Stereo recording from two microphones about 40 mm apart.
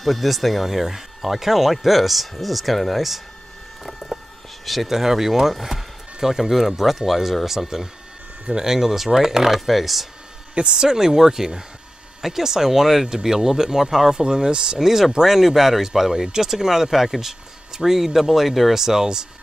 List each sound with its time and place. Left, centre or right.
0.0 s speech: centre
3.8 s a sound: centre
4.6 s speech: centre
10.5 s speech: right
14.2 s speech: right
14.9 s speech: centre